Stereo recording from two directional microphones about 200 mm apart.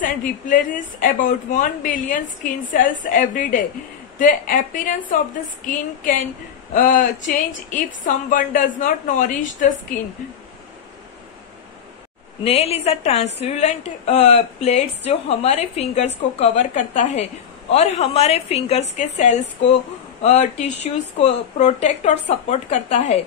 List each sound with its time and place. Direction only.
0.0 s a woman's voice: 40° left (ahead or behind)
12.4 s a woman's voice: 30° left (ahead or behind)